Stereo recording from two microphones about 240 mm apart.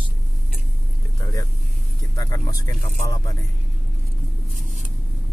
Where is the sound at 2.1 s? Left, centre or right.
Centre.